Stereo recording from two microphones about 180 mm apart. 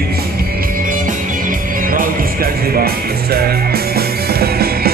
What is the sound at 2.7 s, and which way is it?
Music, 60° right (ahead or behind).